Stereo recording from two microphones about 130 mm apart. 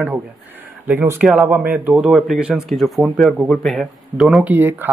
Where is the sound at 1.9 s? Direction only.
Centre (ahead or behind).